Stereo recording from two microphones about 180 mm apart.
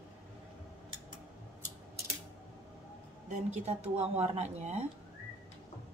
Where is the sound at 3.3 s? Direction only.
35° right (ahead or behind).